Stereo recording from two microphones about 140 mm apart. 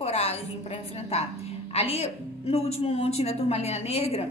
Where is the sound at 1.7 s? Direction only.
45° left (ahead or behind).